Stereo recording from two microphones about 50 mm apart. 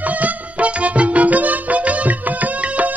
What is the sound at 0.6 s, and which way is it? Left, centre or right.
Music, right.